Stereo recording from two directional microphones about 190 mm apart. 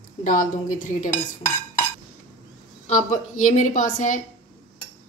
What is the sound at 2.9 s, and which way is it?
A woman's voice, 40° left (ahead or behind).